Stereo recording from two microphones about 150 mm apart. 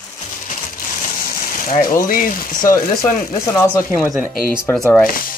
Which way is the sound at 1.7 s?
65° left (ahead or behind).